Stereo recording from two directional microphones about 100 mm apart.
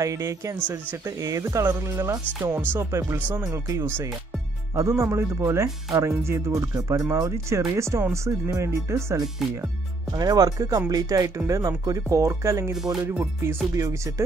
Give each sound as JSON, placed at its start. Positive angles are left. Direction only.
{"t": 0.0, "sound": "speech", "side_deg": -30}
{"t": 4.7, "sound": "speech", "side_deg": -30}
{"t": 13.0, "sound": "speech", "side_deg": -20}
{"t": 13.7, "sound": "speech", "side_deg": -35}